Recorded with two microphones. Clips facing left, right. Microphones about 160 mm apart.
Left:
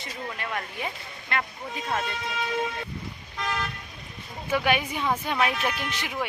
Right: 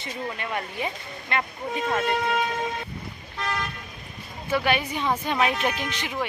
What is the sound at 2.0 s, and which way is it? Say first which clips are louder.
Speech: right 8 dB; 60° right (ahead or behind).